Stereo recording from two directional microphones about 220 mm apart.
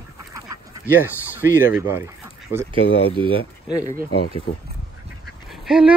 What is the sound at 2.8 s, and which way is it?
Speech, 55° left (ahead or behind).